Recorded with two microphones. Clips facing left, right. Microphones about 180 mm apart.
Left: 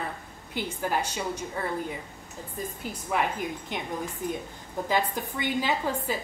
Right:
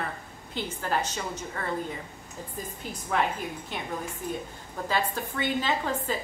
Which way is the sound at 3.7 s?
15° left (ahead or behind).